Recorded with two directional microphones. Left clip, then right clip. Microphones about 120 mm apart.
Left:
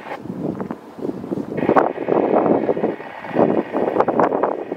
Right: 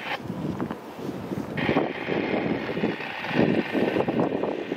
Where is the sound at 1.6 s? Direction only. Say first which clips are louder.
Left 8 dB; 40° right (ahead or behind).